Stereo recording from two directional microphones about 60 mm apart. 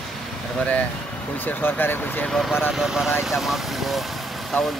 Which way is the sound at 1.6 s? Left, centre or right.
Left.